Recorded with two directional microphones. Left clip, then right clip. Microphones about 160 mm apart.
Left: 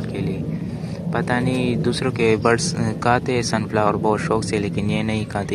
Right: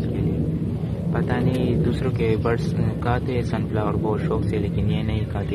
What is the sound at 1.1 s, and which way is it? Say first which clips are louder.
Speech: left 4 dB; 40° left (ahead or behind).